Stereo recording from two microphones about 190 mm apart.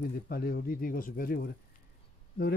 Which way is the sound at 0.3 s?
55° left (ahead or behind).